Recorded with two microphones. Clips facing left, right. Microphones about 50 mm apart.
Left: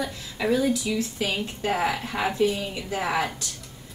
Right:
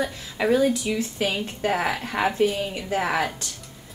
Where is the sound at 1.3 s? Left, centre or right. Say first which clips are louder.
Right 2 dB; right.